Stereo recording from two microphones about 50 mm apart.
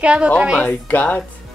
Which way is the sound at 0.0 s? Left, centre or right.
Right.